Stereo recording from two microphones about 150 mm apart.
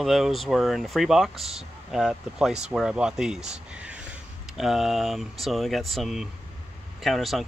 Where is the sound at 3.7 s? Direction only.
10° right (ahead or behind).